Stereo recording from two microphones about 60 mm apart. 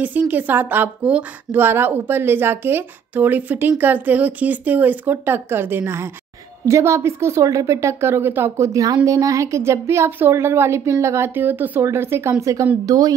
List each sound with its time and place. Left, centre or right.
0.0 s a woman's voice: right
1.6 s a woman's voice: right
6.6 s a woman's voice: right
8.5 s a woman's voice: right
8.8 s a woman's voice: right
10.9 s a woman's voice: right
11.8 s a woman's voice: right
12.8 s a woman's voice: right